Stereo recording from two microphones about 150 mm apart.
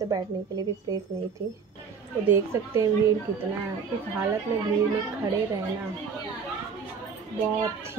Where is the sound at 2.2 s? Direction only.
15° right (ahead or behind).